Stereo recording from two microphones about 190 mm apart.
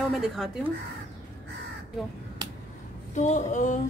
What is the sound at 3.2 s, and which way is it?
Speech, 40° left (ahead or behind).